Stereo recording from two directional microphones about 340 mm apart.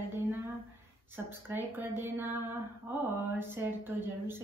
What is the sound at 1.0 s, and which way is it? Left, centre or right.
A woman's voice, centre.